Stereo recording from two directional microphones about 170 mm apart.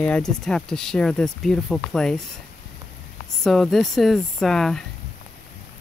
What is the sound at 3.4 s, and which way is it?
Speech, centre (ahead or behind).